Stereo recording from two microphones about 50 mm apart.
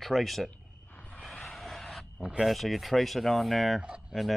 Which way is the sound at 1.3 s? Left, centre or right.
Centre.